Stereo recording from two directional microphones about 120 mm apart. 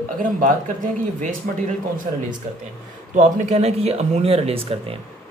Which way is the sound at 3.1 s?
80° right.